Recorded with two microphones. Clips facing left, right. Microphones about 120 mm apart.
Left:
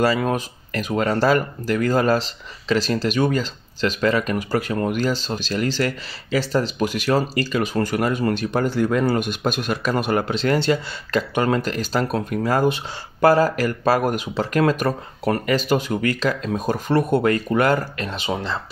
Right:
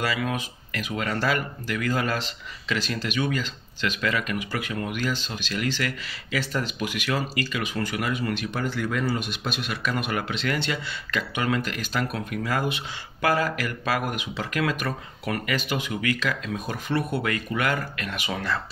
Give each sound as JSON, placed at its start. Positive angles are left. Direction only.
{"t": 0.0, "sound": "speech", "side_deg": 40}